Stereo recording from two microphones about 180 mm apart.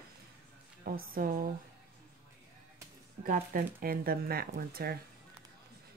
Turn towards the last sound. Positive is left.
turn(degrees=-55)  # may be behind; listen again after turning